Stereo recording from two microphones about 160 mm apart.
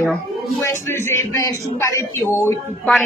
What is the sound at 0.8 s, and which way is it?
Speech, 15° left (ahead or behind).